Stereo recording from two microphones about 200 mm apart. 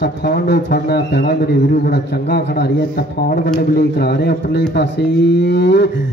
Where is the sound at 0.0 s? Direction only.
60° left (ahead or behind).